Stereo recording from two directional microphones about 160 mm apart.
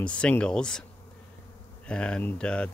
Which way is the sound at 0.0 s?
5° left (ahead or behind).